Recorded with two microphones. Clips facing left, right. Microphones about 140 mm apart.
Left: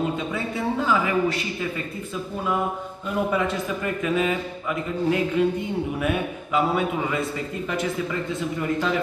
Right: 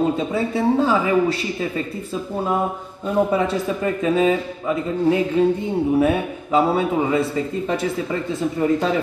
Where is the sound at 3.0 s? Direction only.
35° right (ahead or behind).